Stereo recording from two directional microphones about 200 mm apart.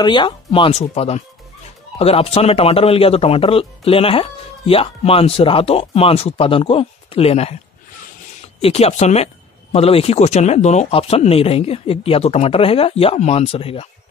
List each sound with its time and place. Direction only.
0.0 s speech: 25° left (ahead or behind)
8.5 s speech: 30° left (ahead or behind)